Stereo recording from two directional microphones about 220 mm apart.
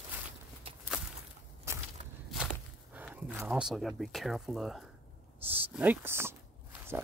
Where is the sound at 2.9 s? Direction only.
5° right (ahead or behind).